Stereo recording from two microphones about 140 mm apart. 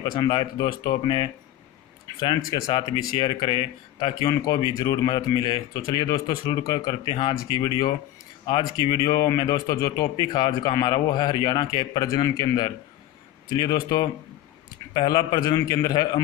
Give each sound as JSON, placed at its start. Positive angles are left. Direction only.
{"t": 0.0, "sound": "a man's voice", "side_deg": 30}
{"t": 15.0, "sound": "a man's voice", "side_deg": 35}